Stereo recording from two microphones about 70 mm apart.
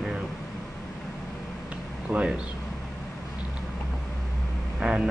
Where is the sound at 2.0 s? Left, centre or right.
Centre.